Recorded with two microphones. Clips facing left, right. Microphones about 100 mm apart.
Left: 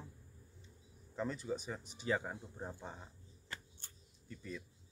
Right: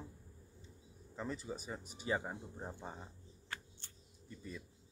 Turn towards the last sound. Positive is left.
turn(degrees=-20)  # may be behind; listen again after turning